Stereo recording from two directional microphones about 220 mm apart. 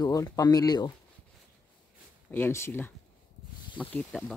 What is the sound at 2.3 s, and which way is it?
Speech, 10° left (ahead or behind).